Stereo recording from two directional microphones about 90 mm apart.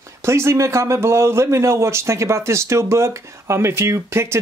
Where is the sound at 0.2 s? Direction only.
30° right (ahead or behind).